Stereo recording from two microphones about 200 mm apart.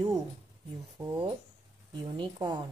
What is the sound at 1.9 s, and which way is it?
Speech, 20° right (ahead or behind).